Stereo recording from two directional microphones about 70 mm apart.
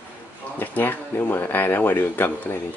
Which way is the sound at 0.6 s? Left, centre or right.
Left.